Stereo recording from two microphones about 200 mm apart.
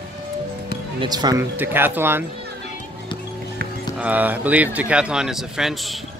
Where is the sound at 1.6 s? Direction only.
10° right (ahead or behind).